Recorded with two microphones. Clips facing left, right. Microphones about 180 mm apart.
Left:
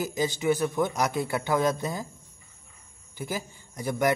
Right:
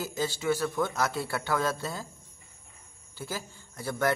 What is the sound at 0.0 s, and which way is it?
A man's voice, 15° left (ahead or behind).